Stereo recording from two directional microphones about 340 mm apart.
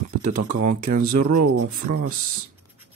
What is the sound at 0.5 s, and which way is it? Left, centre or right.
Speech, right.